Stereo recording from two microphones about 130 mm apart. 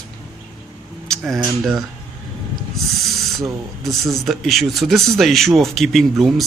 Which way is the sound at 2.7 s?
Centre (ahead or behind).